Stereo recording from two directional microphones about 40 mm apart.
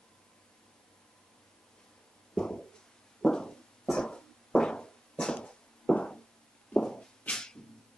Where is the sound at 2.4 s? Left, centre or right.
Centre.